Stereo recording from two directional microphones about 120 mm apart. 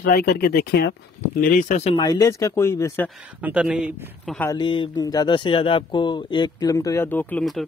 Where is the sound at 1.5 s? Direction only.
75° left (ahead or behind).